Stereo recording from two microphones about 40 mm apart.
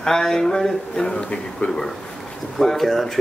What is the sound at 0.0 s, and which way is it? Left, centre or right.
A man's voice, centre.